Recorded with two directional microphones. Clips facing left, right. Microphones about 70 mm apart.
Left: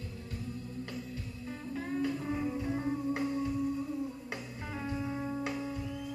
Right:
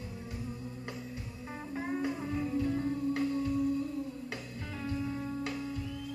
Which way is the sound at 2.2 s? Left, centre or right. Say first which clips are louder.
Right 2 dB; centre.